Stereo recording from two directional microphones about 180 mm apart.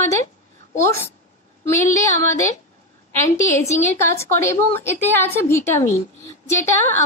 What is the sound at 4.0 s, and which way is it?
A woman's voice, 15° left (ahead or behind).